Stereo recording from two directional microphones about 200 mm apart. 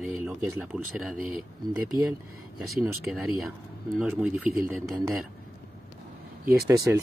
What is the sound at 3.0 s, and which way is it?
Speech, centre (ahead or behind).